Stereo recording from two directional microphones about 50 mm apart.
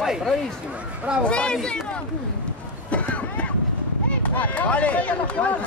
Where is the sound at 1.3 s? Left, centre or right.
Left.